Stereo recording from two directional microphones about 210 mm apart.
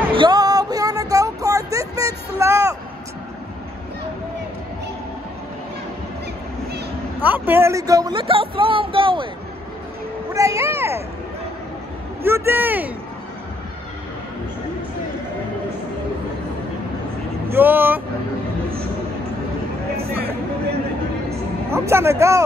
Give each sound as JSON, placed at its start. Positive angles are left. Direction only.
{"t": 0.1, "sound": "a sound", "side_deg": -20}
{"t": 7.2, "sound": "speech", "side_deg": -10}
{"t": 10.3, "sound": "speech", "side_deg": -15}
{"t": 12.2, "sound": "speech", "side_deg": -10}
{"t": 17.5, "sound": "speech", "side_deg": -10}
{"t": 21.6, "sound": "speech", "side_deg": -10}